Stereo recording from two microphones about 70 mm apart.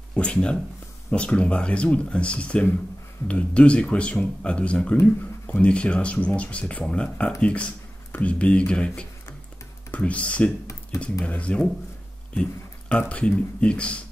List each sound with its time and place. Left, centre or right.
0.1 s speech: centre
12.4 s a sound: centre
13.6 s speech: centre